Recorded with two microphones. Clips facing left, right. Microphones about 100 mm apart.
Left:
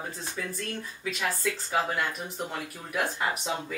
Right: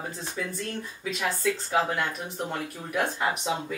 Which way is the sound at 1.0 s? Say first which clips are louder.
Right 3 dB; centre (ahead or behind).